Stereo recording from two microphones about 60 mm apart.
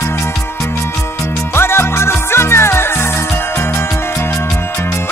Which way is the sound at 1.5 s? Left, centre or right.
Left.